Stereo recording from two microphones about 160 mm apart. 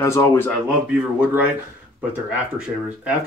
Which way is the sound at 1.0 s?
10° right (ahead or behind).